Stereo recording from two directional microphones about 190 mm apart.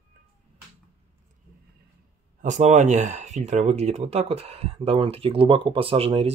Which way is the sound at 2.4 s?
40° right (ahead or behind).